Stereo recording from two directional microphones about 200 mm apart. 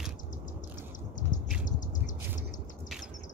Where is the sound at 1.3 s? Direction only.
40° left (ahead or behind).